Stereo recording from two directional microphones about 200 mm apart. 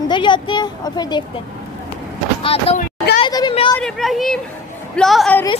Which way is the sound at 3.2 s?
20° left (ahead or behind).